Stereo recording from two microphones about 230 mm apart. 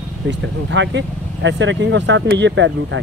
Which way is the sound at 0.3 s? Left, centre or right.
Right.